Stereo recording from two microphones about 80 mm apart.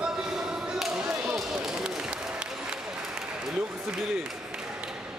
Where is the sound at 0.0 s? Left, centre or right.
Centre.